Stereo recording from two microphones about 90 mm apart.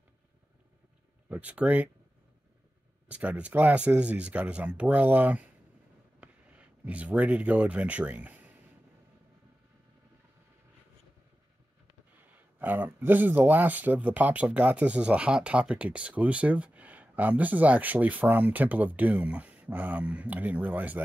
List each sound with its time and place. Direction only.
1.3 s speech: 15° right (ahead or behind)
3.1 s speech: 15° right (ahead or behind)
12.5 s speech: 20° right (ahead or behind)